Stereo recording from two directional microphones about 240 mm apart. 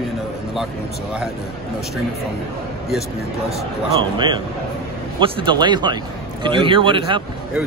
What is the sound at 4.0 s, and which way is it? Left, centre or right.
Speech, centre.